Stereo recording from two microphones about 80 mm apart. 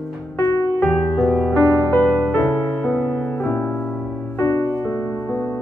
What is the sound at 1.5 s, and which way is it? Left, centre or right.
Music, left.